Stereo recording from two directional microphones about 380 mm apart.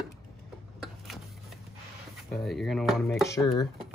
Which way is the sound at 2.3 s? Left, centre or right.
Centre.